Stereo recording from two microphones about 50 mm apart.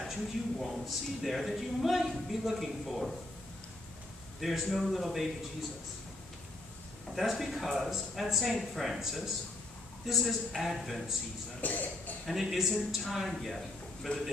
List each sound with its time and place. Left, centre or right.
0.0 s speech: centre
4.4 s speech: centre
7.1 s speech: centre
11.6 s speech: left
12.3 s speech: centre